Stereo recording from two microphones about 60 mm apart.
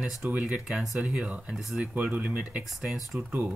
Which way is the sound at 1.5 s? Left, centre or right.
Centre.